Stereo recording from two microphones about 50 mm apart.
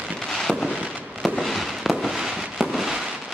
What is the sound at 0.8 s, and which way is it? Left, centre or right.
Fireworks, right.